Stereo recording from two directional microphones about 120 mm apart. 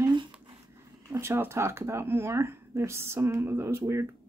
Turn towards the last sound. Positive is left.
turn(degrees=-25)  # may be behind; listen again after turning